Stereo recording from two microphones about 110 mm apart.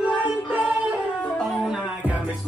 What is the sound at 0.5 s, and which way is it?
Singing, 15° right (ahead or behind).